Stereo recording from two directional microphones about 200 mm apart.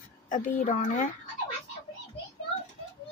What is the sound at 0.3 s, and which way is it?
Speech, 40° left (ahead or behind).